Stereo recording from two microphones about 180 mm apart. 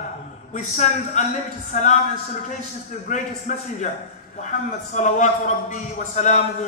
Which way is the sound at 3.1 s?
45° left (ahead or behind).